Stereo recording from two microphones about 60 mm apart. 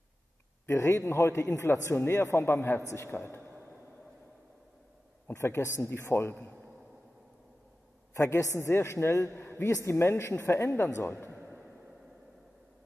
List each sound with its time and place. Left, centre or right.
0.7 s a man's voice: left
5.3 s a man's voice: left
8.1 s a man's voice: left